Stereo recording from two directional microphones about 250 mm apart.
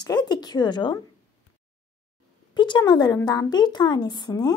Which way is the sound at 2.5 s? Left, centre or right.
Centre.